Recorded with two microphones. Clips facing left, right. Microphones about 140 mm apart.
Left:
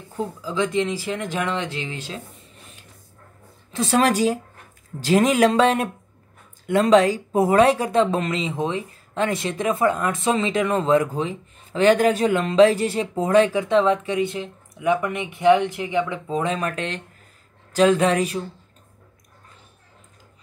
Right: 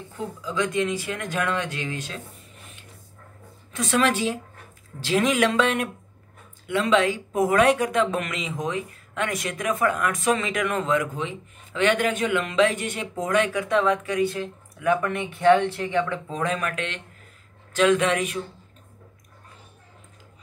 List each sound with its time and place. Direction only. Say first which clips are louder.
0.4 s speech: left 2 dB; 30° left (ahead or behind)
3.7 s speech: left 3 dB; 35° left (ahead or behind)